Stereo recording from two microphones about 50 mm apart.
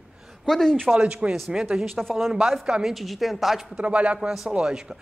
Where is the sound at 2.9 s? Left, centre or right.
Centre.